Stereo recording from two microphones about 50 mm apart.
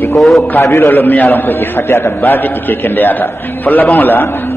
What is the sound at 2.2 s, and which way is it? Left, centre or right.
A man's voice, left.